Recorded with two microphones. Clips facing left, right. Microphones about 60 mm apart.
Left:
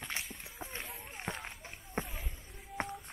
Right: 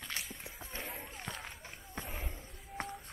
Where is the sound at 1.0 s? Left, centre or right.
Left.